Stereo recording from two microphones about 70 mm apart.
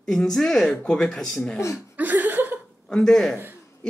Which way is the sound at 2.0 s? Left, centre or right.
Right.